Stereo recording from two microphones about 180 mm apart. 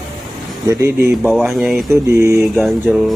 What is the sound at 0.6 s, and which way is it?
Speech, 15° right (ahead or behind).